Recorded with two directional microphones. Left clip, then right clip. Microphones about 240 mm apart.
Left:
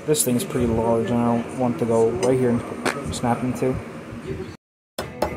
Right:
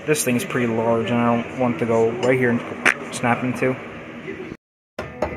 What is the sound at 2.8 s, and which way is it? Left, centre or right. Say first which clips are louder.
Speech: right 6 dB; centre.